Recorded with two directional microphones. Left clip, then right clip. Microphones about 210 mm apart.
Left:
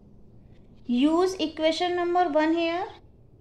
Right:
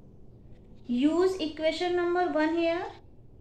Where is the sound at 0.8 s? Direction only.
40° left (ahead or behind).